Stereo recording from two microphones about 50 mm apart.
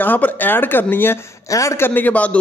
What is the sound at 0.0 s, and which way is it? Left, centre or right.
A man's voice, left.